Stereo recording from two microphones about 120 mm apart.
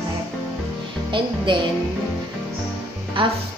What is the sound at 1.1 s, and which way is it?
Speech, 40° right (ahead or behind).